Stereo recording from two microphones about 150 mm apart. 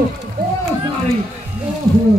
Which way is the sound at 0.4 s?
75° right (ahead or behind).